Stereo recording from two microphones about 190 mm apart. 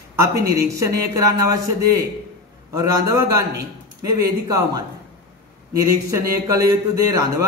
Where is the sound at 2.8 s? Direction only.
15° right (ahead or behind).